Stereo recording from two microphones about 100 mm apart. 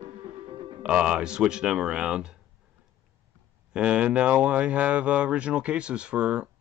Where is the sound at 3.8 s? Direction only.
10° right (ahead or behind).